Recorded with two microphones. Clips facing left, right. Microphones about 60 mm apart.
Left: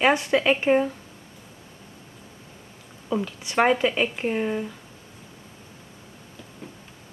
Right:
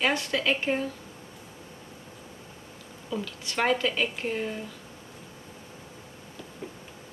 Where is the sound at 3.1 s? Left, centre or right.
Left.